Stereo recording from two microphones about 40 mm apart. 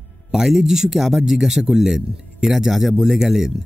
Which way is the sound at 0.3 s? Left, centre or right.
Centre.